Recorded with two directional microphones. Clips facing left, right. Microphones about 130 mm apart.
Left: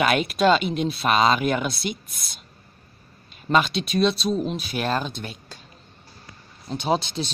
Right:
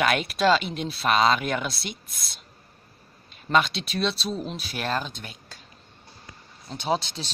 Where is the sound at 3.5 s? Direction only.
10° left (ahead or behind).